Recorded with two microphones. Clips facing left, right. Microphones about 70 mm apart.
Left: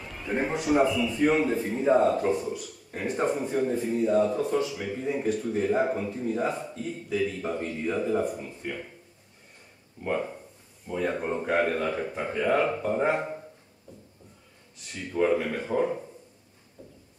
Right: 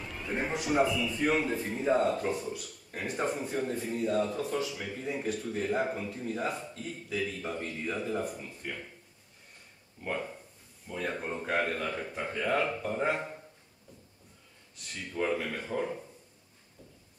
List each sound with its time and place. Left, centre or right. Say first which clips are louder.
0.0 s a man's voice: left 5 dB; centre
10.0 s speech: left 6 dB; centre
14.8 s speech: left 7 dB; centre